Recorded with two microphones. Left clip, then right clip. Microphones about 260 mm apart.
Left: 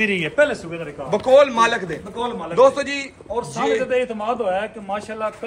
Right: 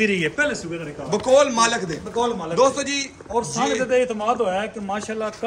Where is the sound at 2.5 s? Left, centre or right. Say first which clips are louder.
Left 4 dB; centre.